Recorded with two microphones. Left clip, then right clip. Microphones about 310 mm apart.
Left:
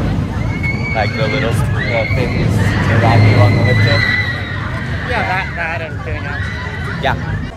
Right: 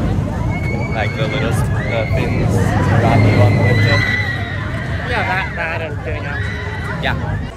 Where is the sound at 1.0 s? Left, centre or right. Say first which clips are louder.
Left 3 dB; centre.